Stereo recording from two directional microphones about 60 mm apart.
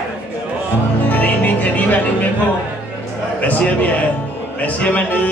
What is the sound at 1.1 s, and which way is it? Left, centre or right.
Music, left.